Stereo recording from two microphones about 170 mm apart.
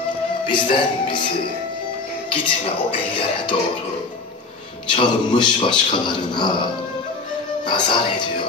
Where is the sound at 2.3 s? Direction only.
30° left (ahead or behind).